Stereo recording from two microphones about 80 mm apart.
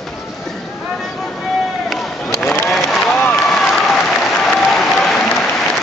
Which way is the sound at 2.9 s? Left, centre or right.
Centre.